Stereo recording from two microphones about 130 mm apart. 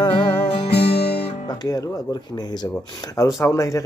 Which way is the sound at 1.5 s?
30° left (ahead or behind).